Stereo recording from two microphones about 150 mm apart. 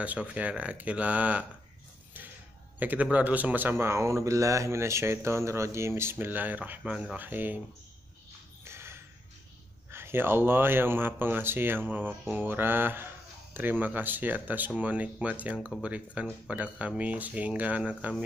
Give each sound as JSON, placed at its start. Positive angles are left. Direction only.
{"t": 0.0, "sound": "speech", "side_deg": -10}
{"t": 2.8, "sound": "speech", "side_deg": -10}
{"t": 8.6, "sound": "a sound", "side_deg": -15}
{"t": 9.8, "sound": "speech", "side_deg": -15}